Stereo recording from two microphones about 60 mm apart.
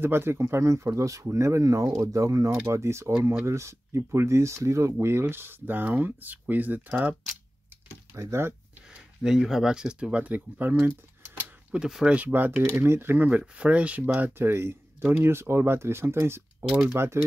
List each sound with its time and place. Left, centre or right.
0.0 s speech: right
2.7 s speech: right
5.0 s speech: right
8.1 s speech: right
9.2 s speech: centre; by 11.5 s right
11.7 s speech: centre
12.6 s speech: right
13.3 s speech: right
14.2 s speech: right